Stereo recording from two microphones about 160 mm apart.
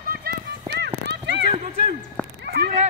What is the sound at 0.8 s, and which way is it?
Clip-clop, 90° right.